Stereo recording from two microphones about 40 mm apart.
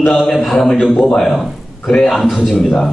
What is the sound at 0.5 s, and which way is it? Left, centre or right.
Speech, centre.